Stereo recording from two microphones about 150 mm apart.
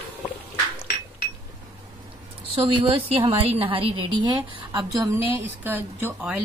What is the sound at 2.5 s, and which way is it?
A woman's voice, 35° right (ahead or behind).